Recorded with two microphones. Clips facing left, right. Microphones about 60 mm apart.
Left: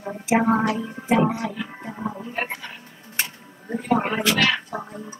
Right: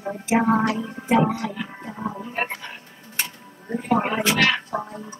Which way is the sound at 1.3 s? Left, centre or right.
Centre.